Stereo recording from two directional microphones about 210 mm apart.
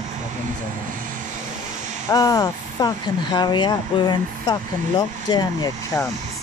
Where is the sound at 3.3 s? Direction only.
20° left (ahead or behind).